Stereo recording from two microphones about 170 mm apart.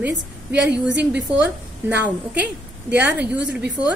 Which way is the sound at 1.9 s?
10° right (ahead or behind).